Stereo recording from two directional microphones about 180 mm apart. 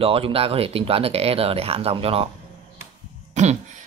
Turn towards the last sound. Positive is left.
turn(degrees=-40)  # may be behind; listen again after turning